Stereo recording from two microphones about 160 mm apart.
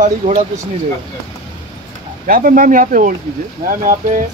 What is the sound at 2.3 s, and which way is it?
Speech, 60° right (ahead or behind).